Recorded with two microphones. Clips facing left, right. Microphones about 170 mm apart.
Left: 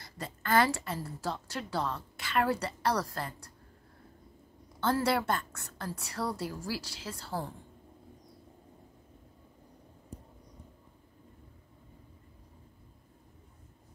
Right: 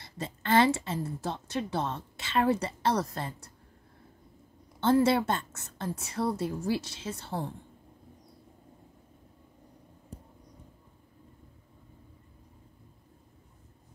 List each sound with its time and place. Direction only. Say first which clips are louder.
0.0 s a woman's voice: right 3 dB; 25° right (ahead or behind)
4.7 s a woman's voice: right 5 dB; 25° right (ahead or behind)